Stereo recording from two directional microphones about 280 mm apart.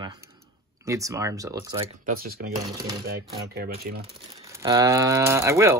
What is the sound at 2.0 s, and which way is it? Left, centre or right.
Speech, right.